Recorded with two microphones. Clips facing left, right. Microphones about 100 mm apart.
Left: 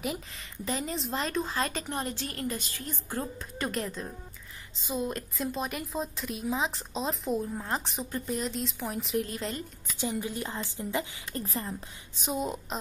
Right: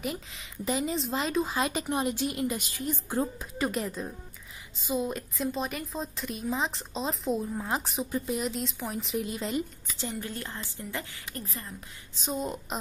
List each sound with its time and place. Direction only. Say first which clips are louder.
0.0 s a woman's voice: even; centre (ahead or behind)
3.5 s a woman's voice: right 2 dB; 5° right (ahead or behind)
9.9 s a woman's voice: left 3 dB; 15° left (ahead or behind)
11.4 s a woman's voice: left 6 dB; 35° left (ahead or behind)
12.2 s a woman's voice: left 1 dB; 10° left (ahead or behind)